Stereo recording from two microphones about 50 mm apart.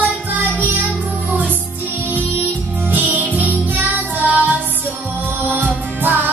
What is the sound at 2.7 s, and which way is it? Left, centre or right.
Music, right.